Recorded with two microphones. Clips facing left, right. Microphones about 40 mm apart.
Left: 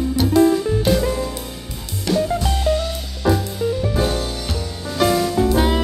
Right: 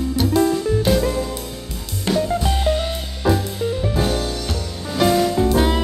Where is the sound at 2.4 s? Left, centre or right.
Right.